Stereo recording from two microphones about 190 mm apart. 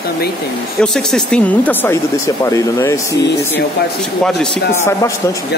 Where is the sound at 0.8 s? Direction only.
5° left (ahead or behind).